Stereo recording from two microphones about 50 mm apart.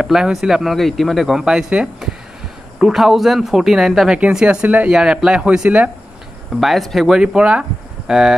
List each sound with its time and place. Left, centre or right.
0.0 s speech: centre
1.4 s speech: centre
4.8 s a man's voice: centre
6.5 s speech: centre
7.1 s a man's voice: centre